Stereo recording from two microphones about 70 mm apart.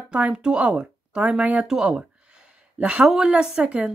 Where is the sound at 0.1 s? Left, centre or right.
Centre.